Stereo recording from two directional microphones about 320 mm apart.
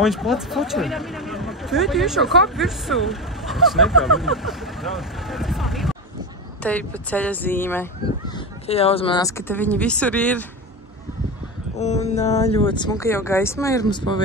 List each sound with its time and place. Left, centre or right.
0.0 s speech: centre
11.8 s mantra: left
12.5 s speech: centre